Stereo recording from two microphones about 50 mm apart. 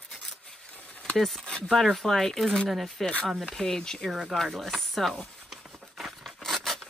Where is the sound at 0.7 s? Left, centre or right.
Left.